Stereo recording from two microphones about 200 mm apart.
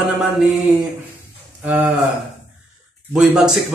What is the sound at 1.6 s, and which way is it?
Speech, 10° right (ahead or behind).